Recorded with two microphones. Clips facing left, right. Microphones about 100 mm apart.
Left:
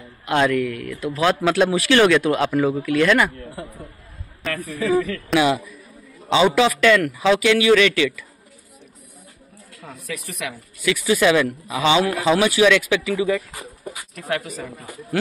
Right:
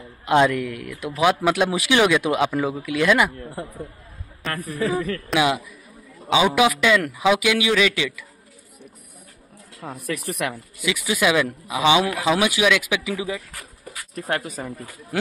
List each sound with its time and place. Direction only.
0.2 s a man's voice: 20° right (ahead or behind)
4.5 s speech: 35° right (ahead or behind)
5.3 s a man's voice: 15° right (ahead or behind)
9.9 s speech: 60° right (ahead or behind)
10.8 s a man's voice: 15° right (ahead or behind)
13.5 s a sound: 15° left (ahead or behind)
14.1 s speech: 35° right (ahead or behind)